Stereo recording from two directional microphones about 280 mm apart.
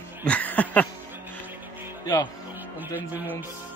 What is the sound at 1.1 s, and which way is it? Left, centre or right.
Music, centre.